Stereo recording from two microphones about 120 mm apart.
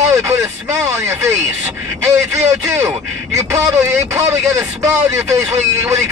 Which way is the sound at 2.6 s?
20° right (ahead or behind).